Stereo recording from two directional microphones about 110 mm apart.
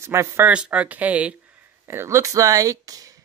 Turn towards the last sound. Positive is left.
turn(degrees=-30)  # may be behind; listen again after turning